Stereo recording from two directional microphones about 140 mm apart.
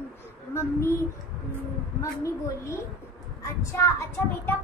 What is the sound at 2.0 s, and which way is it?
A woman's voice, 20° left (ahead or behind).